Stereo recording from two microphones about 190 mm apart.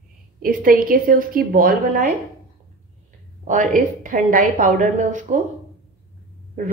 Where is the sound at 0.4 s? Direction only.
50° right (ahead or behind).